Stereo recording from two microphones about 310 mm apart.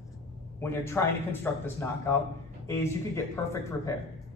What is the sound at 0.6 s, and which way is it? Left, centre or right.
A man's voice, centre.